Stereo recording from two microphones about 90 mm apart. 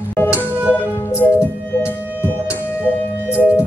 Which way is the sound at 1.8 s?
20° left (ahead or behind).